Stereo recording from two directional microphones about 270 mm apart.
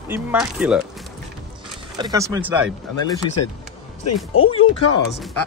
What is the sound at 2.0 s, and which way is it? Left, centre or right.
Speech, centre.